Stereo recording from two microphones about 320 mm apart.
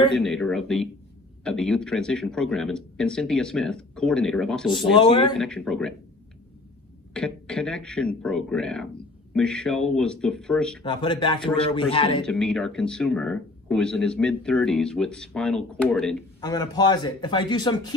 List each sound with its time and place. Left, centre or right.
0.1 s speech: centre
4.9 s a man's voice: centre
5.4 s speech: centre
7.2 s speech: centre
10.8 s a man's voice: centre
12.3 s a man's voice: centre